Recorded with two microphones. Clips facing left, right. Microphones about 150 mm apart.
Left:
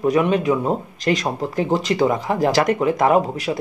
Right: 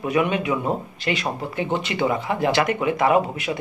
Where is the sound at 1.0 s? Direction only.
40° left (ahead or behind).